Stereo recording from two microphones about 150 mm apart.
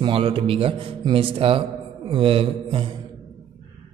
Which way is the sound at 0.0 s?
35° right (ahead or behind).